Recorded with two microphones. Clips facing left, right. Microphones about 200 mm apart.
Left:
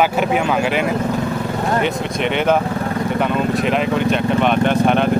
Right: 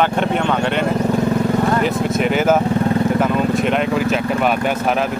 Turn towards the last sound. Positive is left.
turn(degrees=-5)  # may be behind; listen again after turning